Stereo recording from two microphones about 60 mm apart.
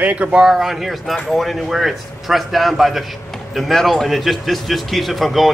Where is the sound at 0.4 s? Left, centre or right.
Centre.